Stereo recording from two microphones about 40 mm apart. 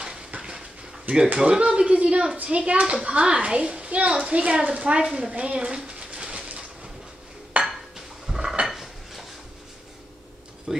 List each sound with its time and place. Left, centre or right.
0.4 s dishes: centre
1.0 s a child's voice: centre
5.0 s a woman's voice: centre
5.3 s a child's voice: right
5.9 s a sound: right
7.5 s dishes: right
8.3 s dishes: centre
10.7 s speech: centre